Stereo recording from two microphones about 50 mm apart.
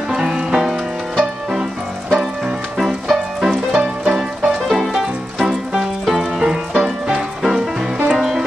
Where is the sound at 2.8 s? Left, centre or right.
Centre.